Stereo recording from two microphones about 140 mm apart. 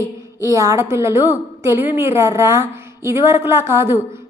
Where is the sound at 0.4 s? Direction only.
20° right (ahead or behind).